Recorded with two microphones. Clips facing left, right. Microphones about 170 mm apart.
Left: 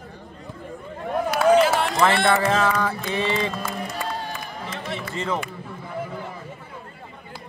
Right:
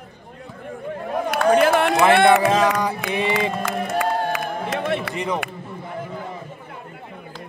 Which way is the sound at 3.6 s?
60° right (ahead or behind).